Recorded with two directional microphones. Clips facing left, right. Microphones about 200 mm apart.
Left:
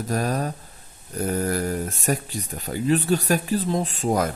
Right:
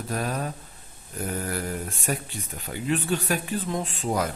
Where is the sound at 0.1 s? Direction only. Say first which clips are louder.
Left 4 dB; 40° left (ahead or behind).